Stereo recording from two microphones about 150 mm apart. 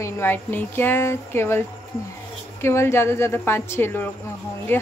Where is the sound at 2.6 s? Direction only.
20° left (ahead or behind).